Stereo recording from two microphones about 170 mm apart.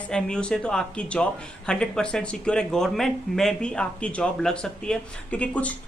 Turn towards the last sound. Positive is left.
turn(degrees=10)  # may be behind; listen again after turning